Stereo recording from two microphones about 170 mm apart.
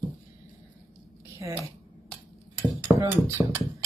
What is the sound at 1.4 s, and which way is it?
Speech, 20° right (ahead or behind).